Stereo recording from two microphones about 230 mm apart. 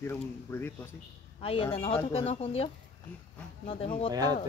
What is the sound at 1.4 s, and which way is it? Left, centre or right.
Speech, left.